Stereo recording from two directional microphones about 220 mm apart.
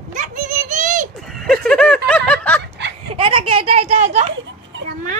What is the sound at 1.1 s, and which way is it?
Snicker, centre (ahead or behind).